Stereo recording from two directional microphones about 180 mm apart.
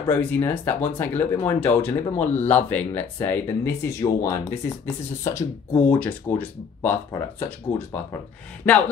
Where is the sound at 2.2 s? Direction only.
40° left (ahead or behind).